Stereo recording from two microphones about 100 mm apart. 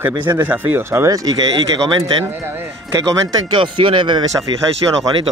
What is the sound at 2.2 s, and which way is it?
Speech, 20° right (ahead or behind).